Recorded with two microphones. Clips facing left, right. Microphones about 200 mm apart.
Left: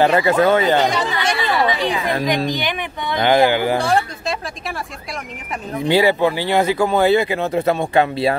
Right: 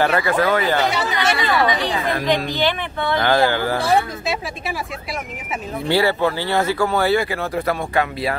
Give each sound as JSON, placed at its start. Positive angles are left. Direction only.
{"t": 0.0, "sound": "speech", "side_deg": 20}
{"t": 0.8, "sound": "speech", "side_deg": -10}
{"t": 2.1, "sound": "speech", "side_deg": 15}
{"t": 3.8, "sound": "speech", "side_deg": -5}
{"t": 5.9, "sound": "speech", "side_deg": 15}